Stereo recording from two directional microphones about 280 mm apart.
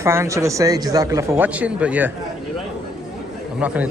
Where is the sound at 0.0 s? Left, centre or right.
Centre.